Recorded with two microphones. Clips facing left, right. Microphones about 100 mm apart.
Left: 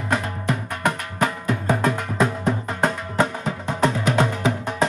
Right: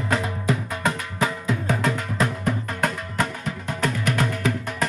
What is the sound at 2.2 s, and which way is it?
Music, 25° left (ahead or behind).